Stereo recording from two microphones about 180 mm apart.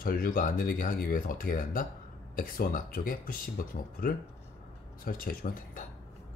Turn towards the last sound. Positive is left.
turn(degrees=50)  # may be behind; listen again after turning